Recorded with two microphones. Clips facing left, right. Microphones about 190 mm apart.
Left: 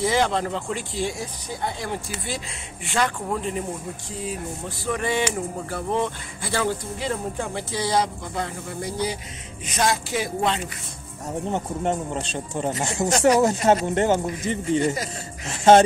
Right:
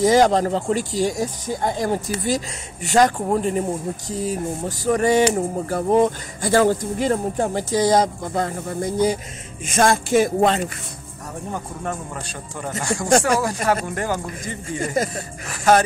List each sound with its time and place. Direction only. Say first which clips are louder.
0.0 s speech: right 7 dB; 40° right (ahead or behind)
11.5 s speech: left 4 dB; 25° left (ahead or behind)